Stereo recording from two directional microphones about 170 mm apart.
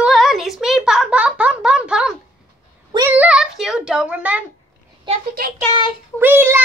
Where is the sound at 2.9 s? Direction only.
10° right (ahead or behind).